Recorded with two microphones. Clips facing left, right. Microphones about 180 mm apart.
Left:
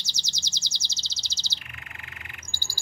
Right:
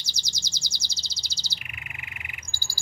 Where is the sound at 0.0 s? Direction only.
10° right (ahead or behind).